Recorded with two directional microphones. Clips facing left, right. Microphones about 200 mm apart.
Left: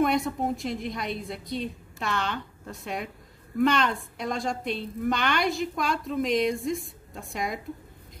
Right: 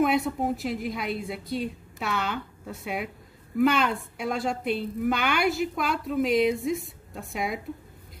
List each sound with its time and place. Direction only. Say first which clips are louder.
0.0 s a woman's voice: right 1 dB; 5° right (ahead or behind)